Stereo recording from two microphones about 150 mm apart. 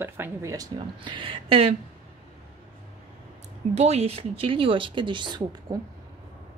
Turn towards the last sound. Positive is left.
turn(degrees=-30)  # may be behind; listen again after turning